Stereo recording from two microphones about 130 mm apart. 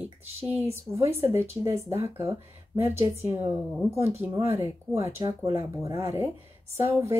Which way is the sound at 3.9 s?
20° right (ahead or behind).